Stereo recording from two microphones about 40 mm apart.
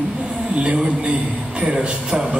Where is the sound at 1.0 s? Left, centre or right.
Right.